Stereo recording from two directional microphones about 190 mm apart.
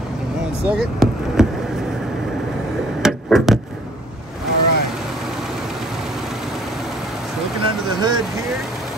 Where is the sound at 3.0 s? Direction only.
Centre (ahead or behind).